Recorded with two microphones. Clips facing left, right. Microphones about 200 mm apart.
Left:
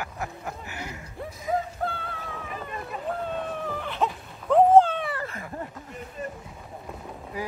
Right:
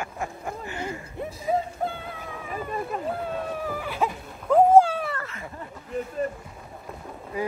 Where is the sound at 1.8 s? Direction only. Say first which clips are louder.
Right 1 dB; 15° right (ahead or behind).